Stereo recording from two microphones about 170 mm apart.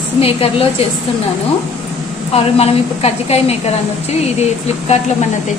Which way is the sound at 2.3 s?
35° left (ahead or behind).